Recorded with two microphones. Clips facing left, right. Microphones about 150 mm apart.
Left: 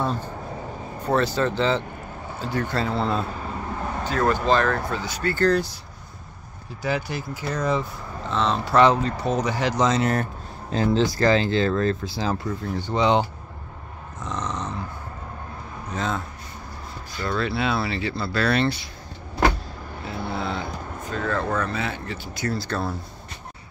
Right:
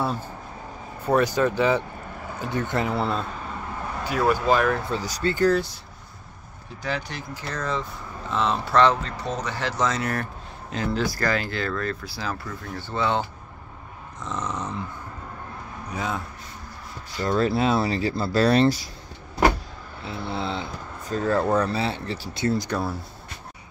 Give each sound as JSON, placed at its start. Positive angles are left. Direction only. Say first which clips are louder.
{"t": 1.0, "sound": "speech", "louder": "right 1 dB", "side_deg": -15}
{"t": 3.0, "sound": "speech", "louder": "left 1 dB", "side_deg": 0}
{"t": 4.0, "sound": "speech", "louder": "even", "side_deg": -10}
{"t": 4.9, "sound": "speech", "louder": "right 1 dB", "side_deg": -40}
{"t": 5.4, "sound": "speech", "louder": "even", "side_deg": -5}
{"t": 6.8, "sound": "speech", "louder": "left 4 dB", "side_deg": 5}
{"t": 8.3, "sound": "speech", "louder": "left 1 dB", "side_deg": -5}
{"t": 8.7, "sound": "speech", "louder": "left 2 dB", "side_deg": 10}
{"t": 14.2, "sound": "a sound", "louder": "even", "side_deg": -5}
{"t": 15.9, "sound": "speech", "louder": "left 2 dB", "side_deg": -10}
{"t": 17.3, "sound": "speech", "louder": "right 4 dB", "side_deg": -40}
{"t": 20.1, "sound": "speech", "louder": "even", "side_deg": -25}
{"t": 21.1, "sound": "speech", "louder": "right 4 dB", "side_deg": -35}